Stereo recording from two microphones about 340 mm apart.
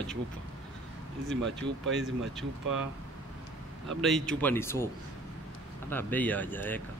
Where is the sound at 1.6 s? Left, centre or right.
Right.